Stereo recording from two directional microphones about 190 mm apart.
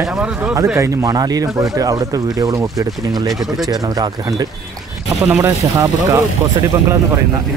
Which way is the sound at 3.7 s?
20° right (ahead or behind).